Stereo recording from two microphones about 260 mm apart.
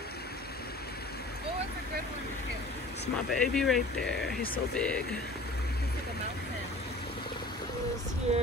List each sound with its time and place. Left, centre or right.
3.3 s speech: centre
8.3 s music: right